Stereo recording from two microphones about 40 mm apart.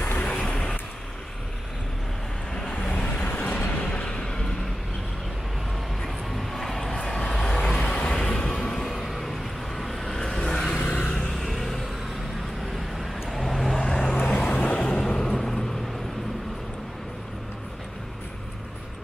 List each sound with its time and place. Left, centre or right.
0.2 s vehicle: left
2.5 s vehicle: left
3.2 s vehicle: left
3.6 s a sound: left
3.9 s vehicle: left
6.0 s vehicle: centre
6.9 s vehicle: left
8.2 s music: left
8.8 s vehicle: centre
11.4 s vehicle: centre
13.0 s vehicle: centre
13.7 s vehicle: centre